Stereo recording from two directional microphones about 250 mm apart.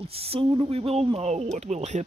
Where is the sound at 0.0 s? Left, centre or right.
Right.